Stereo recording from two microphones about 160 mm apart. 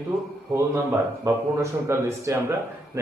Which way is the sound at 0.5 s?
20° right (ahead or behind).